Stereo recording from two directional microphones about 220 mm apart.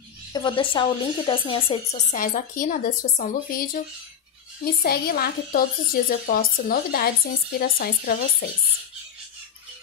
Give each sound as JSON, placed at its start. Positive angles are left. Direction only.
{"t": 0.3, "sound": "a woman's voice", "side_deg": 20}